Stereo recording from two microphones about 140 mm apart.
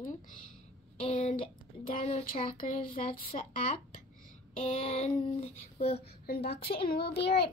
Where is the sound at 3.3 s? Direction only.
55° left (ahead or behind).